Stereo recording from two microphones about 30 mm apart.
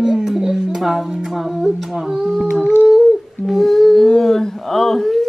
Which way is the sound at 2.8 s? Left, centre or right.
Centre.